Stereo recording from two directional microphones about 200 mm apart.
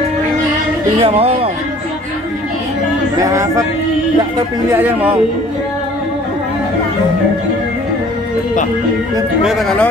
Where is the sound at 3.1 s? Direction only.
15° right (ahead or behind).